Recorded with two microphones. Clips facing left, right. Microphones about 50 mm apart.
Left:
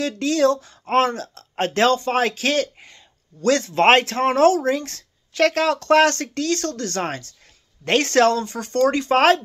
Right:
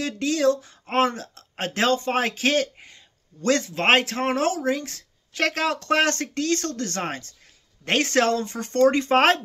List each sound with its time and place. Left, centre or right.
0.0 s a woman's voice: centre
1.6 s a woman's voice: centre
1.9 s speech: right
3.7 s a woman's voice: centre; by 9.4 s right